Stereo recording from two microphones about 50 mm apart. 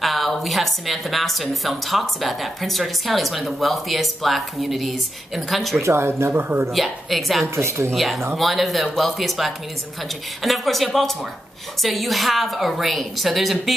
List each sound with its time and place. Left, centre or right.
0.0 s a woman's voice: centre
5.8 s speech: right
6.0 s speech: right
6.7 s a woman's voice: centre
7.5 s speech: right
7.9 s a woman's voice: centre